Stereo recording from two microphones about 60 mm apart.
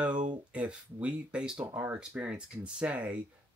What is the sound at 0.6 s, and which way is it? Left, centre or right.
Speech, right.